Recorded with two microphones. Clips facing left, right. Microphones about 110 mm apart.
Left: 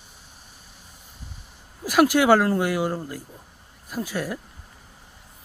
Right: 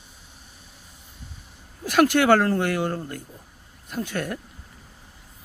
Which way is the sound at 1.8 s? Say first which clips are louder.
Even; 5° left (ahead or behind).